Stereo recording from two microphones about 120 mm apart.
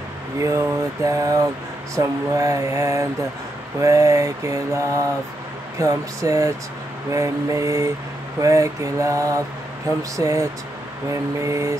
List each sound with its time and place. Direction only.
0.4 s mantra: 25° right (ahead or behind)